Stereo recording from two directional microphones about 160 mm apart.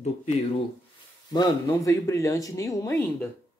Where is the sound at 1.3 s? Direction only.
25° left (ahead or behind).